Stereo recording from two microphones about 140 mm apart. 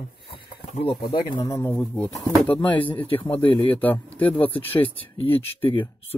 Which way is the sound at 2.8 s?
40° left (ahead or behind).